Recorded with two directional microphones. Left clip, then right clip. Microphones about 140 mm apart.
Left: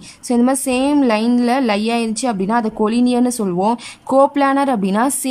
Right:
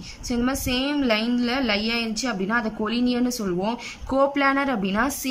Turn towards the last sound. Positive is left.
turn(degrees=35)  # may be behind; listen again after turning